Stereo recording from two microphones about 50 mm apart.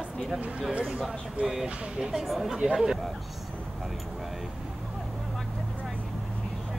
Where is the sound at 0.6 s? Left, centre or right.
Centre.